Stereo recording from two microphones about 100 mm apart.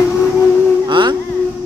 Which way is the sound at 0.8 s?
50° right (ahead or behind).